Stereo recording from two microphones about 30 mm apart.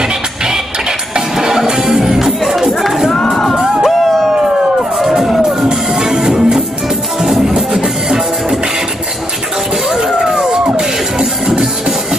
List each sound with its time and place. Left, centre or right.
1.3 s music: centre
3.5 s music: centre
3.9 s a sound: centre
5.2 s music: centre
5.7 s music: centre
7.5 s music: right
11.1 s music: right